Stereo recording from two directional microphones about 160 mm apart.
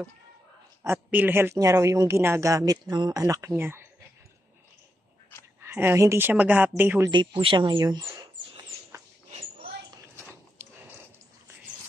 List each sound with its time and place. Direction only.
0.8 s speech: 10° right (ahead or behind)
5.6 s speech: 15° right (ahead or behind)
7.1 s speech: 30° right (ahead or behind)
8.0 s rodents: 20° right (ahead or behind)
9.3 s a sound: 40° right (ahead or behind)